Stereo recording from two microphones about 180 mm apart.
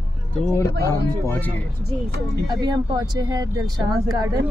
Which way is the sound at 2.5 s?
25° right (ahead or behind).